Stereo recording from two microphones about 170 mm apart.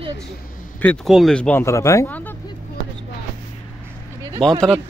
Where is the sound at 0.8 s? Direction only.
5° left (ahead or behind).